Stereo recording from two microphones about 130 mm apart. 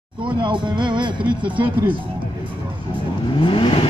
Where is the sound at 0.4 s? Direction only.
35° right (ahead or behind).